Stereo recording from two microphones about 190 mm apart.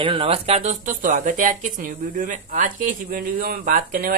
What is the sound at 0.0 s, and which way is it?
Speech, 25° right (ahead or behind).